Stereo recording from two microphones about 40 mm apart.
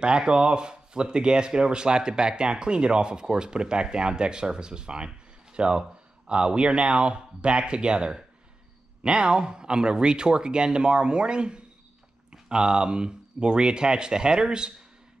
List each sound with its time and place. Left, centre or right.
0.0 s speech: right